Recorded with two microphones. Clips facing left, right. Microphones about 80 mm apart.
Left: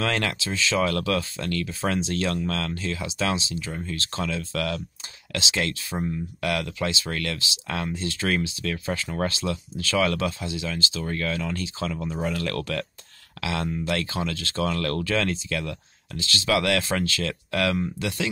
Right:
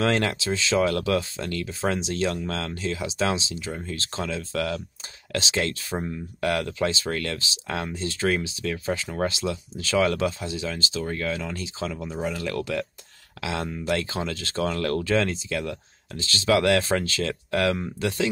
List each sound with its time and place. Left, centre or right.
0.0 s speech: right